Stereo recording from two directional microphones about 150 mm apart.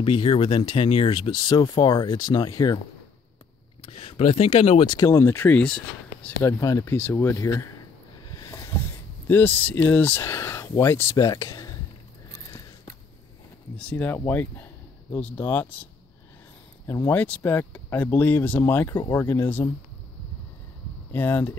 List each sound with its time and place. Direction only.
0.0 s speech: 35° left (ahead or behind)
3.8 s speech: 40° left (ahead or behind); by 6.3 s 5° left (ahead or behind)
6.4 s speech: 20° left (ahead or behind)
13.7 s speech: 10° left (ahead or behind)
16.8 s speech: 20° left (ahead or behind)
21.1 s speech: 15° left (ahead or behind)